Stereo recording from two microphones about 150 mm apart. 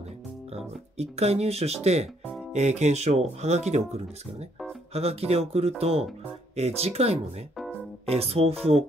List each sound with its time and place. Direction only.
0.6 s speech: 45° right (ahead or behind)